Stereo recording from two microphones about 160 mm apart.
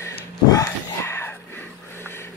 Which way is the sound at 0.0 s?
20° left (ahead or behind).